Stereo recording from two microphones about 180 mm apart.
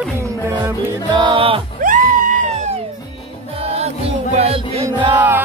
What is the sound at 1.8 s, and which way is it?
Screaming, 50° right (ahead or behind).